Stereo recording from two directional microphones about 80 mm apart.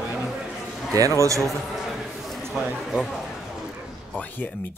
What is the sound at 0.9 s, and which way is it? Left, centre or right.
Speech, right.